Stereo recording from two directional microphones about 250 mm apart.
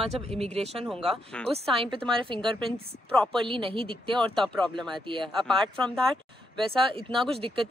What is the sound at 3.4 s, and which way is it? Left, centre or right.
Speech, right.